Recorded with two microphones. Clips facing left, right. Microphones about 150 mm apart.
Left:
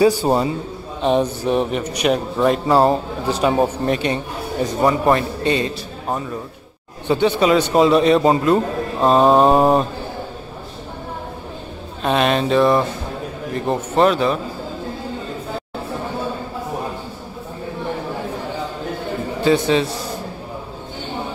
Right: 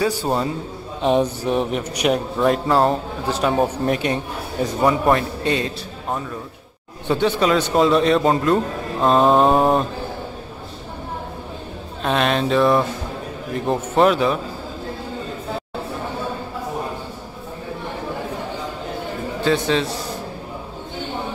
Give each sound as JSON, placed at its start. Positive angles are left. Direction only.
{"t": 0.0, "sound": "a man's voice", "side_deg": 15}
{"t": 1.0, "sound": "a man's voice", "side_deg": 0}
{"t": 7.1, "sound": "a man's voice", "side_deg": 5}
{"t": 12.0, "sound": "a man's voice", "side_deg": 5}
{"t": 19.4, "sound": "a man's voice", "side_deg": 5}